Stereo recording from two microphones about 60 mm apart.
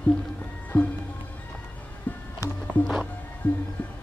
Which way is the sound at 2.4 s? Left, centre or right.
Left.